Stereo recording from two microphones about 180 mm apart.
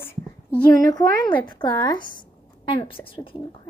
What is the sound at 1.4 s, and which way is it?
A woman's voice, 25° left (ahead or behind).